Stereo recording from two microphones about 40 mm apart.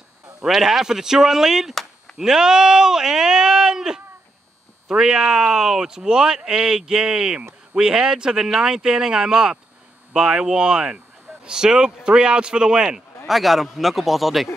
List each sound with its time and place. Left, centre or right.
0.5 s speech: centre
13.3 s a man's voice: centre